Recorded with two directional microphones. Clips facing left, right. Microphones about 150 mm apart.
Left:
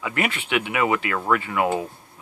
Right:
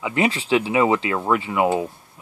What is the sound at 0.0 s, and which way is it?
Speech, 25° right (ahead or behind).